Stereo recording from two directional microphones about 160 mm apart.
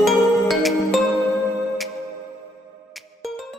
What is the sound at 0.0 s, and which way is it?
Music, centre (ahead or behind).